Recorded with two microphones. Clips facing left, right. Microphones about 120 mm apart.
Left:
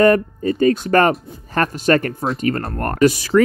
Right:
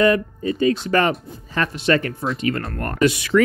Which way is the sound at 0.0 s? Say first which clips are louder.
Left 4 dB; 45° left (ahead or behind).